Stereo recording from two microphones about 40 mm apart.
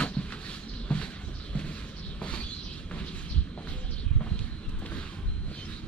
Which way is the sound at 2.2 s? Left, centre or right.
Left.